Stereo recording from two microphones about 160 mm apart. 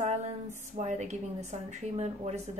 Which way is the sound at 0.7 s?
45° right (ahead or behind).